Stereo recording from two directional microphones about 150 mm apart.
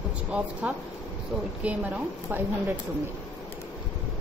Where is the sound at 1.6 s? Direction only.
10° right (ahead or behind).